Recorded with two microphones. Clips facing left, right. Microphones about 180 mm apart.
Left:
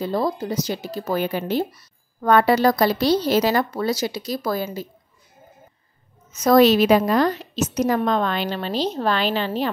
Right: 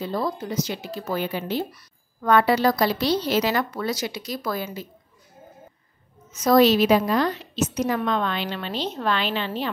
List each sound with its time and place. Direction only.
0.0 s a woman's voice: 40° left (ahead or behind)
6.4 s a woman's voice: 50° left (ahead or behind)